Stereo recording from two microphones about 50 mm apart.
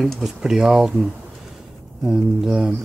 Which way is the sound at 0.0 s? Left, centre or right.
Centre.